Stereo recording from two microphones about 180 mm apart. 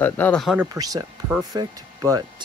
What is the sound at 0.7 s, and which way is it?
Speech, 20° right (ahead or behind).